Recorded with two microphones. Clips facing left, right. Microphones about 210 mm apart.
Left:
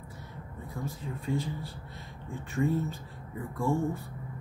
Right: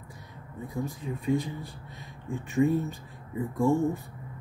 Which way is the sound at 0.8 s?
15° right (ahead or behind).